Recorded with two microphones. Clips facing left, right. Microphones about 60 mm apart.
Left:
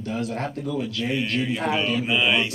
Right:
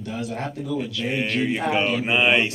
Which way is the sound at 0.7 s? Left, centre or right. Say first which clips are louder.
Right 1 dB; right.